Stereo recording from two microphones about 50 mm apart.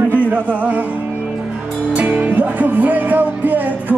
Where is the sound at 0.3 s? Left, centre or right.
Right.